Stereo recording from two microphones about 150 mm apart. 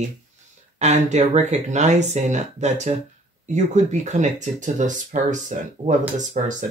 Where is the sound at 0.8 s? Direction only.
50° right (ahead or behind).